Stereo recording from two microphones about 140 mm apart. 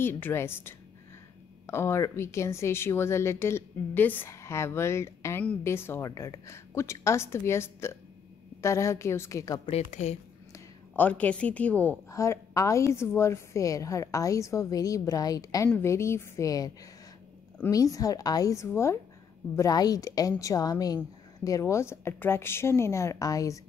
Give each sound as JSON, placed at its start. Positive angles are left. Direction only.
{"t": 0.0, "sound": "a woman's voice", "side_deg": 15}
{"t": 9.7, "sound": "a woman's voice", "side_deg": 50}
{"t": 11.0, "sound": "a woman's voice", "side_deg": 10}
{"t": 12.1, "sound": "a woman's voice", "side_deg": 20}